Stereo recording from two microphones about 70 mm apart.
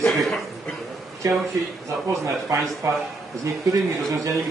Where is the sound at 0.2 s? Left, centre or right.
Centre.